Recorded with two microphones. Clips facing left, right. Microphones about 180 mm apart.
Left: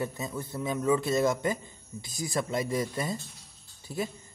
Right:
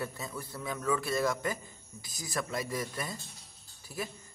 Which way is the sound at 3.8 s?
25° left (ahead or behind).